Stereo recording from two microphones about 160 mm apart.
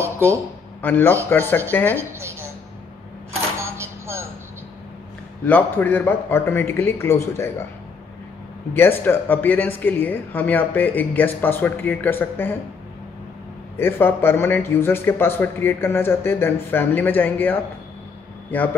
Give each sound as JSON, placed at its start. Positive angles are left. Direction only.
{"t": 0.0, "sound": "a sound", "side_deg": -15}
{"t": 0.8, "sound": "speech", "side_deg": 10}
{"t": 2.0, "sound": "a woman's voice", "side_deg": -15}
{"t": 3.5, "sound": "a sound", "side_deg": -15}
{"t": 5.4, "sound": "speech", "side_deg": 10}
{"t": 8.7, "sound": "speech", "side_deg": 15}
{"t": 13.7, "sound": "speech", "side_deg": 15}